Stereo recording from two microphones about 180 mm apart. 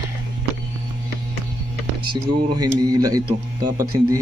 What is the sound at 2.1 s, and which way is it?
Speech, 20° right (ahead or behind).